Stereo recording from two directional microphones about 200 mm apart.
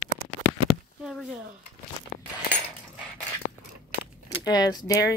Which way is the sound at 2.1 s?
45° left (ahead or behind).